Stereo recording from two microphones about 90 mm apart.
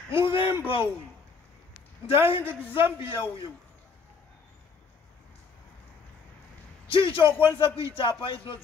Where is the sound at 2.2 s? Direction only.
25° right (ahead or behind).